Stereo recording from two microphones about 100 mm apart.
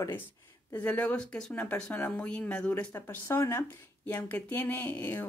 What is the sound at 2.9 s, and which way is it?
Speech, 25° left (ahead or behind).